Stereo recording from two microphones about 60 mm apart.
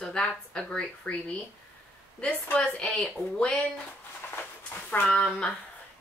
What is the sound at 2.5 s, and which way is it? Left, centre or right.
Speech, centre.